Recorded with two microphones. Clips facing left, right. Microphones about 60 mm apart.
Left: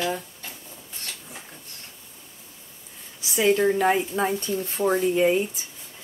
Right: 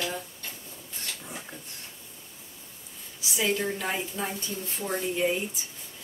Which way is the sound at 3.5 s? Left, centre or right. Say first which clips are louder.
Left 10 dB; left.